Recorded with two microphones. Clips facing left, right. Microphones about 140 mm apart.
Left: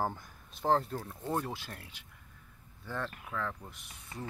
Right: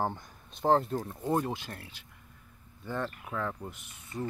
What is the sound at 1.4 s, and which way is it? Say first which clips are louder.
Speech: right 5 dB; centre (ahead or behind).